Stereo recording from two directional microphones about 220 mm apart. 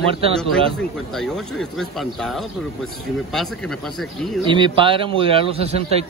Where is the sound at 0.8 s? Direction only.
Centre (ahead or behind).